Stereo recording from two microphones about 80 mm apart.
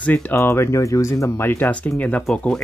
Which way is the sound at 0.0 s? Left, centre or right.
Left.